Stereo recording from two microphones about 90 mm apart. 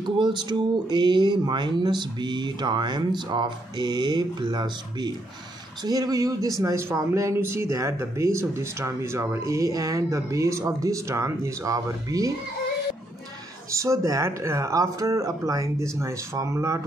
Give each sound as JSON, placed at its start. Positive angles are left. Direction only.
{"t": 0.0, "sound": "speech", "side_deg": -55}
{"t": 6.6, "sound": "speech", "side_deg": -30}
{"t": 13.7, "sound": "speech", "side_deg": -35}